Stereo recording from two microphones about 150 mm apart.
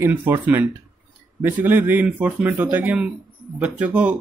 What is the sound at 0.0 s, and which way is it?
Speech, 15° right (ahead or behind).